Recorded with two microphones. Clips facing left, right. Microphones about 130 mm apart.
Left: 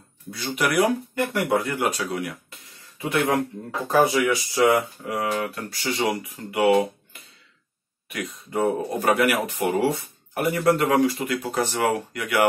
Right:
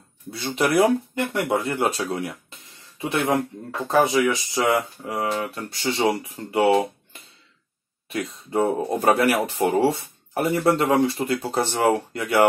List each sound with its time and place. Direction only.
0.6 s speech: 25° right (ahead or behind)